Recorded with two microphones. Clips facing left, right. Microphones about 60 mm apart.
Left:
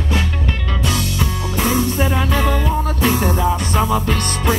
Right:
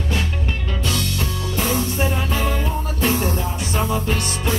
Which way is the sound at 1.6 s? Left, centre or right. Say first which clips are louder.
Left 4 dB; left.